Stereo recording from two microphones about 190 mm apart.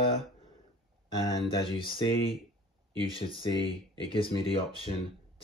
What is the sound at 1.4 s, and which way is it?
Speech, 30° left (ahead or behind).